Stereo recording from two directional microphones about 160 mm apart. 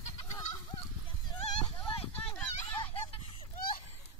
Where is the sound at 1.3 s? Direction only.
30° left (ahead or behind).